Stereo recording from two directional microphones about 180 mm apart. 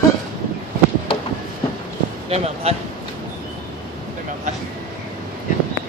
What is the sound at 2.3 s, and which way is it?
Speech, 35° right (ahead or behind).